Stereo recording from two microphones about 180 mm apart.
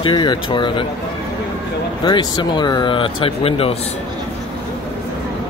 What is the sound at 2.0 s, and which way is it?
Speech, 25° left (ahead or behind).